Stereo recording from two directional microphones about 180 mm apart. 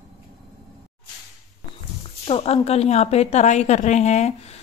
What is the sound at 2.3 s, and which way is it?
Speech, 35° left (ahead or behind).